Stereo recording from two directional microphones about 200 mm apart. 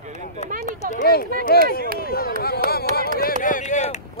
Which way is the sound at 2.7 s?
50° left (ahead or behind).